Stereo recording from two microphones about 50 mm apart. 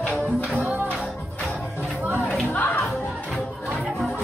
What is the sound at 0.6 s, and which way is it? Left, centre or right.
Music, right.